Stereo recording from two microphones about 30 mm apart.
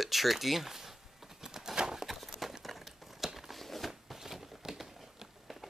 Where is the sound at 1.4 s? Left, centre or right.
Centre.